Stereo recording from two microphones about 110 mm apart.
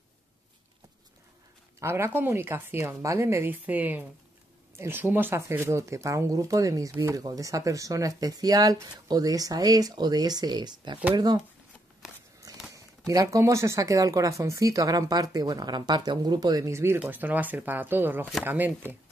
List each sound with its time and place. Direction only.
1.8 s speech: 25° right (ahead or behind)
7.2 s speech: 30° right (ahead or behind)
12.7 s speech: 30° right (ahead or behind)